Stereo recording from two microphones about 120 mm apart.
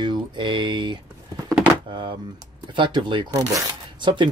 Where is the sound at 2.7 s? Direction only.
40° right (ahead or behind).